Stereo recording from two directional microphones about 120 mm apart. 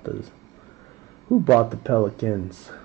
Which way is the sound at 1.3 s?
15° left (ahead or behind).